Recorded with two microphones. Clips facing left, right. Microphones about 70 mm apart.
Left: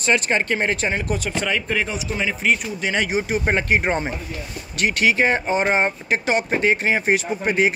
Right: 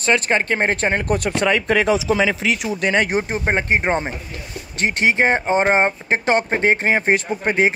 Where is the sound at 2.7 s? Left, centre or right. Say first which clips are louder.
Right 4 dB; right.